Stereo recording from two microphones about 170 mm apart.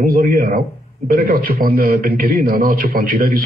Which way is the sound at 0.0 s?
55° right (ahead or behind).